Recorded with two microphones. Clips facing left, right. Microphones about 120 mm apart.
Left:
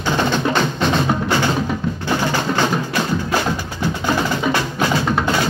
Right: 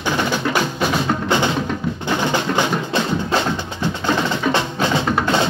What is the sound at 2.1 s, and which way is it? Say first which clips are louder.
Music: even; 20° right (ahead or behind).